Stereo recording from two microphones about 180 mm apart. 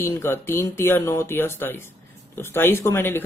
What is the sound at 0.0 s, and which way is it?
Speech, 15° left (ahead or behind).